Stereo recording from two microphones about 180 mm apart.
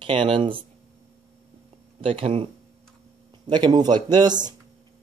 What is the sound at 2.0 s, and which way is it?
Speech, 30° right (ahead or behind).